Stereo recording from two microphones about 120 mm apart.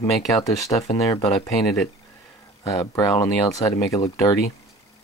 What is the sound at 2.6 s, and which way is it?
Speech, 25° left (ahead or behind).